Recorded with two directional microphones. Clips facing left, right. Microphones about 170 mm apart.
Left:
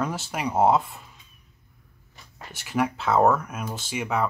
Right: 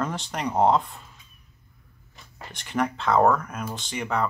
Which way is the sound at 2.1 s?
5° left (ahead or behind).